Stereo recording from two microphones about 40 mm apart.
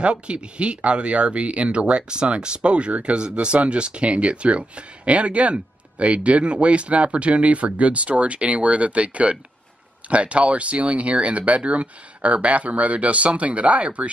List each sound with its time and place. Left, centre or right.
0.0 s speech: right